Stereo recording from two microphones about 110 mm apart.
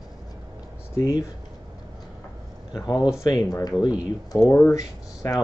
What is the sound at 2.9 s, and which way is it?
Speech, 5° right (ahead or behind).